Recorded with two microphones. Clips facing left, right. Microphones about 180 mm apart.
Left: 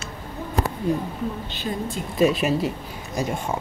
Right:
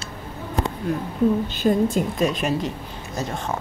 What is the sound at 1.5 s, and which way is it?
Speech, 45° right (ahead or behind).